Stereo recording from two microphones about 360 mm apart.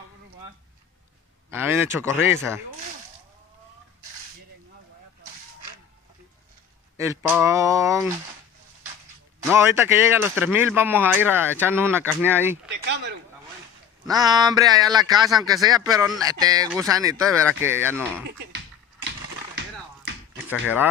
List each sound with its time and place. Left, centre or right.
1.5 s speech: centre
7.0 s speech: centre
9.5 s speech: centre
12.8 s speech: right
14.0 s speech: centre
20.4 s speech: centre